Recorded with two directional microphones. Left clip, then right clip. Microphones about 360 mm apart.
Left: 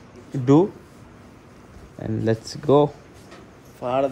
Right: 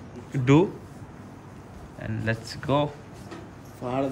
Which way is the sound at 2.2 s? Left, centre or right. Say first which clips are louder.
Left 6 dB; centre.